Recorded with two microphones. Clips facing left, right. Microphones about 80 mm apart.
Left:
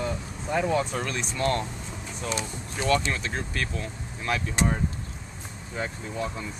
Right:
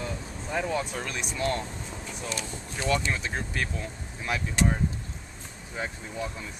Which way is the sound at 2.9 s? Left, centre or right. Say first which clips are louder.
Left 2 dB; centre.